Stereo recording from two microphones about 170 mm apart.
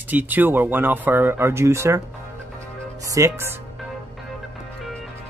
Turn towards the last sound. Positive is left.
turn(degrees=-15)  # may be behind; listen again after turning